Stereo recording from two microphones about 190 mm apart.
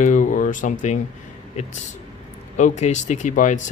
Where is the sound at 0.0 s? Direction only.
40° left (ahead or behind).